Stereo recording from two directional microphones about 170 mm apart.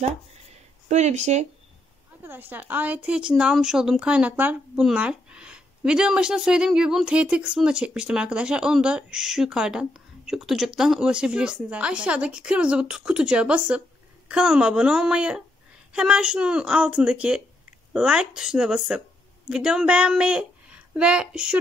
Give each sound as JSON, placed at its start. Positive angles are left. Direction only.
{"t": 0.8, "sound": "speech", "side_deg": -40}
{"t": 2.2, "sound": "speech", "side_deg": -10}